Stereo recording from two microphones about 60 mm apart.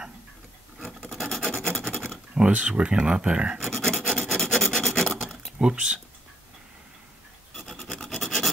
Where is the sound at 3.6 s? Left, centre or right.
Centre.